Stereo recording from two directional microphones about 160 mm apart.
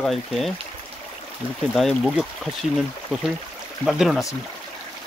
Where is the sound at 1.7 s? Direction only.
Centre (ahead or behind).